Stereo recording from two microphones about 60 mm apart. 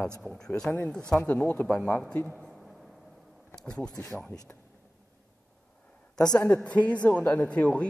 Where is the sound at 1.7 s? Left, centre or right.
Centre.